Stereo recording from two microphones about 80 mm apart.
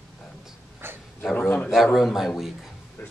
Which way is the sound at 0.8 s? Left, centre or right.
Right.